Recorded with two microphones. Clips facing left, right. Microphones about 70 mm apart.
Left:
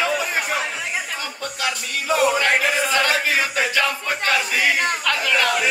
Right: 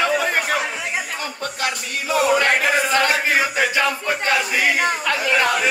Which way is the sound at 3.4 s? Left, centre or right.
Right.